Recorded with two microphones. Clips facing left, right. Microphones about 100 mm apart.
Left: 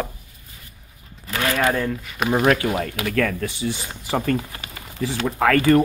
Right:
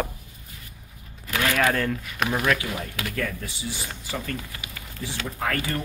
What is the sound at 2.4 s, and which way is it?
Speech, 40° left (ahead or behind).